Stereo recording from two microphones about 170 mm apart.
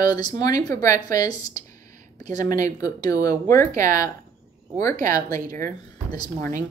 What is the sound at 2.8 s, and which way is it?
Speech, 20° left (ahead or behind).